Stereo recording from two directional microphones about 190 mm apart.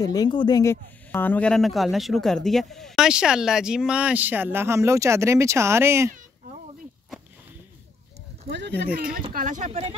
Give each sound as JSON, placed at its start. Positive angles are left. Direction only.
{"t": 0.0, "sound": "speech", "side_deg": 20}
{"t": 8.5, "sound": "speech", "side_deg": -65}
{"t": 8.9, "sound": "speech", "side_deg": -45}